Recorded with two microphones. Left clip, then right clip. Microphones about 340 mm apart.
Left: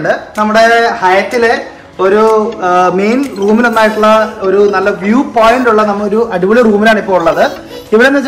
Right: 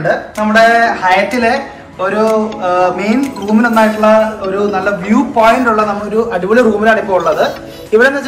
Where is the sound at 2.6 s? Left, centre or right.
Left.